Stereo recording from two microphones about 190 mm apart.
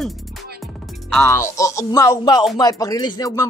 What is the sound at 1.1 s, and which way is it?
Speech, 15° left (ahead or behind).